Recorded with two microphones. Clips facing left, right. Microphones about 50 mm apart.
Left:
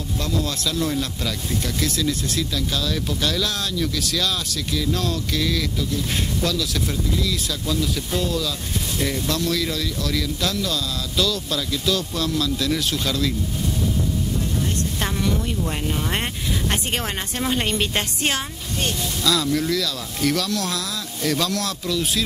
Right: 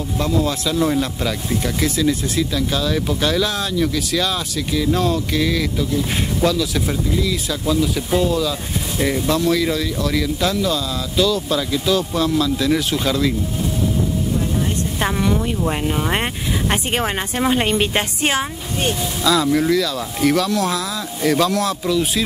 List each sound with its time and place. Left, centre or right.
0.2 s a woman's voice: centre
14.4 s vehicle: centre
16.6 s a woman's voice: centre